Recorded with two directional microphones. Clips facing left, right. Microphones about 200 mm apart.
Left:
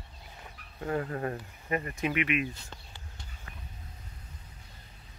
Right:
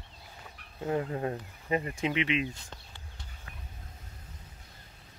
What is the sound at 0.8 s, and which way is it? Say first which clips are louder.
Speech: right 1 dB; 10° right (ahead or behind).